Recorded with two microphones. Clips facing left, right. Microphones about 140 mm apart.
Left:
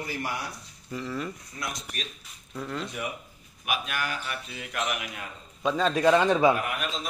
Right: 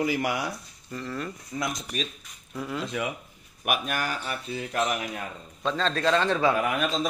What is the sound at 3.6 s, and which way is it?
Speech, 50° right (ahead or behind).